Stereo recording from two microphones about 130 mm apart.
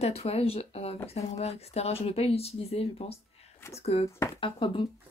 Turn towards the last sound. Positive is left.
turn(degrees=40)  # may be behind; listen again after turning